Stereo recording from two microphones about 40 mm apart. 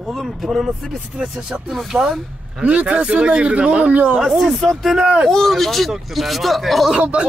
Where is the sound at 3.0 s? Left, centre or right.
Right.